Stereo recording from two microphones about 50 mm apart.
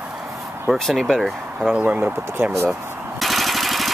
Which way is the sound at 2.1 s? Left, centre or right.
Right.